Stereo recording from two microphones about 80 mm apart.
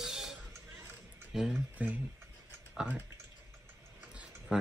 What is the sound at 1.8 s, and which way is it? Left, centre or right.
Speech, centre.